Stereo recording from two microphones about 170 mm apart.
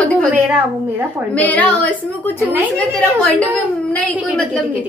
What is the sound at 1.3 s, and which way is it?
A woman's voice, 10° left (ahead or behind).